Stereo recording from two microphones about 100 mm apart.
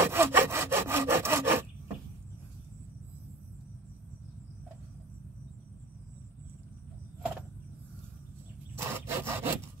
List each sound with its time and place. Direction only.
0.0 s sawing: 25° right (ahead or behind)
8.7 s wood: 25° right (ahead or behind)